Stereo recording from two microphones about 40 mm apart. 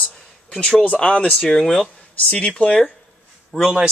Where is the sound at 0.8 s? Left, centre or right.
Left.